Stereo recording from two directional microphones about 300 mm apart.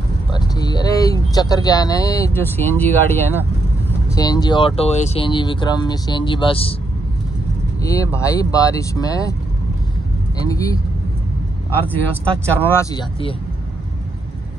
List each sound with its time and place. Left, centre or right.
0.4 s speech: centre
7.8 s speech: centre
10.4 s speech: centre